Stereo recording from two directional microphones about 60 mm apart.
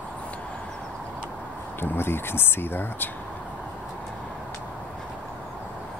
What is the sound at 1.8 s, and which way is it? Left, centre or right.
Speech, left.